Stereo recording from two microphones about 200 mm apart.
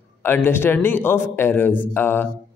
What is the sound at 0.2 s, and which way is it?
A man's voice, 10° left (ahead or behind).